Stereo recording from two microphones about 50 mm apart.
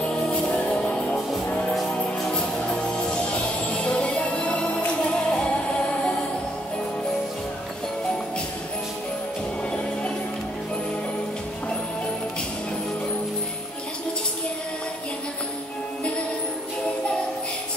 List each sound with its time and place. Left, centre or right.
0.0 s music: left